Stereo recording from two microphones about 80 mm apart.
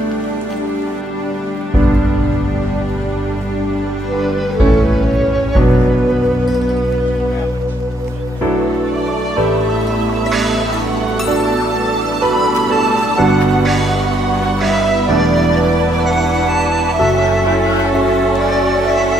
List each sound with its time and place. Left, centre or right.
10.3 s music: centre
12.3 s music: centre
18.5 s music: centre